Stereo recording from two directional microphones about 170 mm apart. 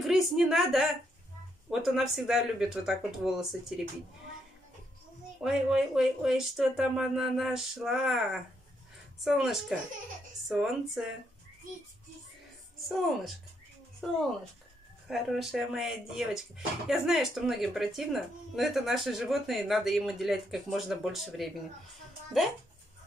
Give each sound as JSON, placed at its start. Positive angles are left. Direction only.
{"t": 0.0, "sound": "speech", "side_deg": 0}
{"t": 5.4, "sound": "speech", "side_deg": -5}
{"t": 12.8, "sound": "speech", "side_deg": 0}
{"t": 15.0, "sound": "speech", "side_deg": 0}